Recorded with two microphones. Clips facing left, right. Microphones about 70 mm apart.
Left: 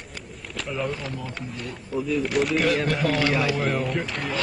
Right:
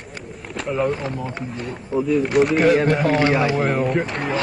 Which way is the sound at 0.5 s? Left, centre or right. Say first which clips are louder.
Right 6 dB; centre.